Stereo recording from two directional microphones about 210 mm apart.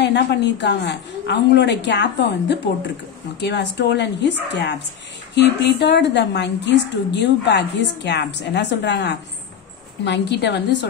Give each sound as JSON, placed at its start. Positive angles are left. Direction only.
{"t": 0.0, "sound": "a woman's voice", "side_deg": 55}